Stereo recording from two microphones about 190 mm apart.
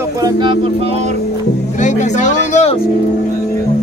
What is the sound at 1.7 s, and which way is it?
Music, 40° left (ahead or behind).